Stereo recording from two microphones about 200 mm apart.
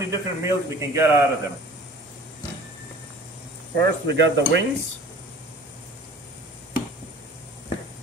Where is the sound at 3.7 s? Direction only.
60° right (ahead or behind).